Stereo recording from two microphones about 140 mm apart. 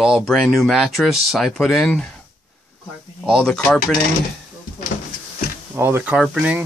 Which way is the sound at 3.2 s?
5° left (ahead or behind).